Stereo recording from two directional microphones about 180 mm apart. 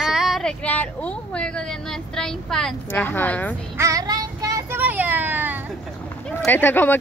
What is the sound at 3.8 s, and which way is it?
Child singing, 20° right (ahead or behind).